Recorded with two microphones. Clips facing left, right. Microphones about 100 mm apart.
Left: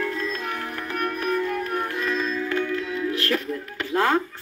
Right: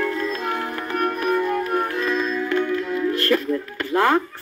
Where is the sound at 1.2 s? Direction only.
25° right (ahead or behind).